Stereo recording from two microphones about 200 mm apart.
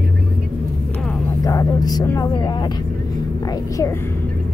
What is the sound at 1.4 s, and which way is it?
Vehicle, 20° left (ahead or behind).